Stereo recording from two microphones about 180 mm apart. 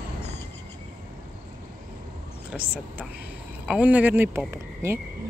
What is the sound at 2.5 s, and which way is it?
Speech, centre (ahead or behind).